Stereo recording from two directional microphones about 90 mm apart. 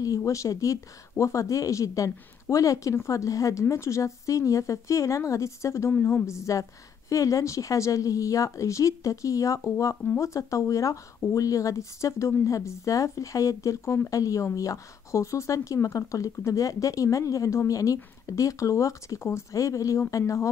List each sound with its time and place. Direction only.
0.0 s a woman's voice: 40° left (ahead or behind)